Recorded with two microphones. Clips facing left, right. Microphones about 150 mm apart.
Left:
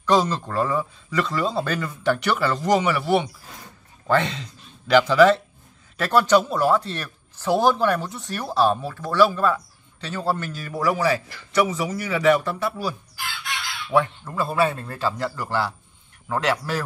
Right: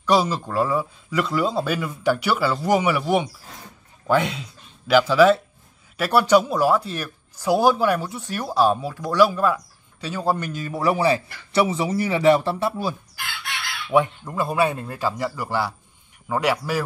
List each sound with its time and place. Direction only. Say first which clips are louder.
0.0 s speech: even; 10° right (ahead or behind); by 12.9 s 25° right (ahead or behind)
13.8 s speech: right 2 dB; 15° right (ahead or behind)